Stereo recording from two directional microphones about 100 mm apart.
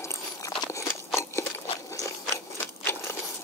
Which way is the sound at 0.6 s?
35° left (ahead or behind).